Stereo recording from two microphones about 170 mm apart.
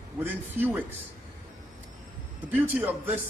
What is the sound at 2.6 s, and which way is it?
Speech, 10° right (ahead or behind).